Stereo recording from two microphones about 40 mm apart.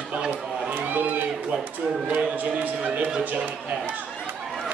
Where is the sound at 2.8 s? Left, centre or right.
Right.